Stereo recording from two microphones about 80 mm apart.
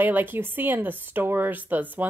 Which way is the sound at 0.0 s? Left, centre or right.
Right.